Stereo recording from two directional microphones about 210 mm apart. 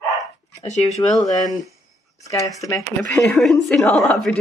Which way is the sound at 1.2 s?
15° left (ahead or behind).